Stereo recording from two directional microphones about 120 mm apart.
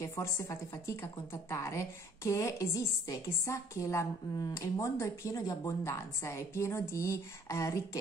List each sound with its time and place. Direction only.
0.0 s a woman's voice: 25° left (ahead or behind)